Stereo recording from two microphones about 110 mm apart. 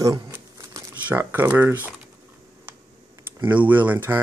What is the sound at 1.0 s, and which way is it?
Speech, 20° right (ahead or behind).